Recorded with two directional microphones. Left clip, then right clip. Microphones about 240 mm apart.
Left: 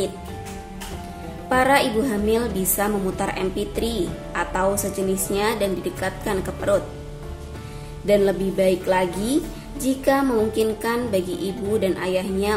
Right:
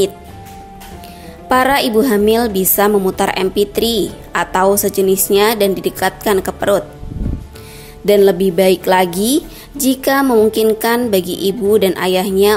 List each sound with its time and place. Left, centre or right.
1.5 s a woman's voice: right
8.0 s a woman's voice: right